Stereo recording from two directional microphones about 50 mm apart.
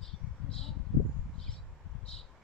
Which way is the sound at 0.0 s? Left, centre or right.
Centre.